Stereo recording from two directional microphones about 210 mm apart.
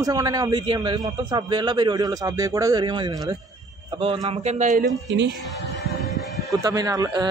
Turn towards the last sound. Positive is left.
turn(degrees=-20)  # may be behind; listen again after turning